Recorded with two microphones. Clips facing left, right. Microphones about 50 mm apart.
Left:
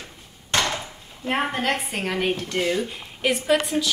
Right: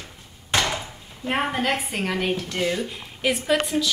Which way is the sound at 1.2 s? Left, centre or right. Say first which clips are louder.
Even; centre.